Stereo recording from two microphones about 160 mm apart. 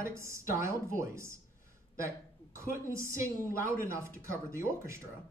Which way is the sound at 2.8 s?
15° right (ahead or behind).